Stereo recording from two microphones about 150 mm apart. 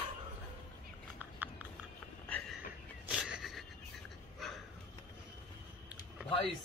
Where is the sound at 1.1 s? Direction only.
10° right (ahead or behind).